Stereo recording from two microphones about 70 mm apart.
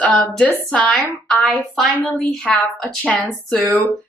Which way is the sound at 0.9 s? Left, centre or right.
Centre.